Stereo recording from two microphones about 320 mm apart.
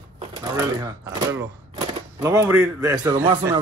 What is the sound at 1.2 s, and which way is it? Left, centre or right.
Speech, centre.